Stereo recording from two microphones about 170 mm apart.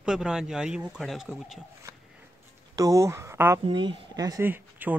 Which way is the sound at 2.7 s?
20° right (ahead or behind).